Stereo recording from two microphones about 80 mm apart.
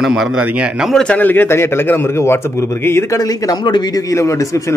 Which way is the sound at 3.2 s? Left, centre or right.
Left.